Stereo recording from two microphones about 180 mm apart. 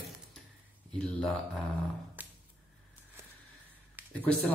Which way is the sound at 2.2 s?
10° right (ahead or behind).